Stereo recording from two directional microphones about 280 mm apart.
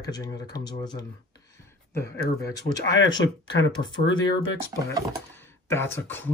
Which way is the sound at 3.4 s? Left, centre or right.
Left.